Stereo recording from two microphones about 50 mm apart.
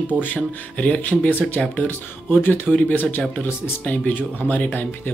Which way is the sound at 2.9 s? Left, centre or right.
Left.